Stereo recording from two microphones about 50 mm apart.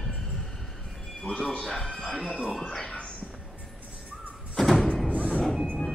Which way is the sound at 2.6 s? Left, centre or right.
Centre.